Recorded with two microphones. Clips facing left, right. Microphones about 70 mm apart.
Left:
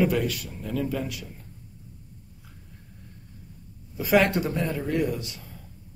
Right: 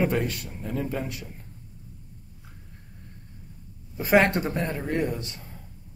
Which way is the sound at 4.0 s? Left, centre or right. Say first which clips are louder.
Right 1 dB; right.